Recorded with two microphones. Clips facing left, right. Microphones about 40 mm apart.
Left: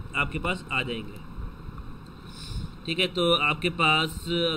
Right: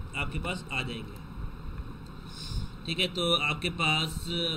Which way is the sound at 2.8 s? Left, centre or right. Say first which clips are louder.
Left 5 dB; centre.